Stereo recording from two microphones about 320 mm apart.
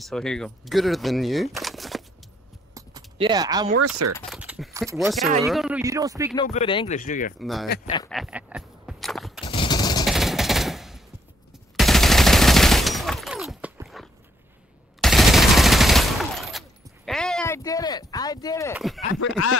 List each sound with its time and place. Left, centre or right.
0.0 s speech: centre
2.7 s keys jangling: centre
3.8 s speech: right
4.3 s speech: centre
6.3 s speech: centre
7.3 s speech: centre
8.1 s a sound: centre
9.5 s gunshot: centre
10.0 s machine gun: centre
11.7 s gunshot: centre
15.0 s fusillade: centre